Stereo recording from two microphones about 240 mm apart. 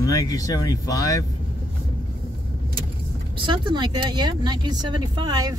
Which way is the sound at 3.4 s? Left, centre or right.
Centre.